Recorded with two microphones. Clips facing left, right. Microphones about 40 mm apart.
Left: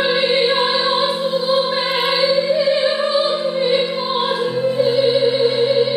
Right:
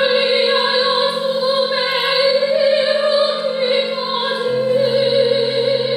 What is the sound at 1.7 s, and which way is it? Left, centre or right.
Opera, centre.